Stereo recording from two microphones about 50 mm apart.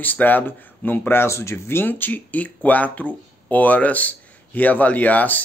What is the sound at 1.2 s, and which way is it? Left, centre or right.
Speech, left.